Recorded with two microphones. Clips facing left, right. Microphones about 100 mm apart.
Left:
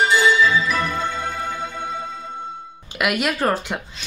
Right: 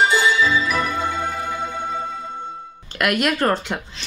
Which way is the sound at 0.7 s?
Centre (ahead or behind).